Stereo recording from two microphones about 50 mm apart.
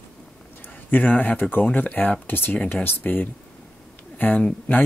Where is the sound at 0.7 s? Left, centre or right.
Left.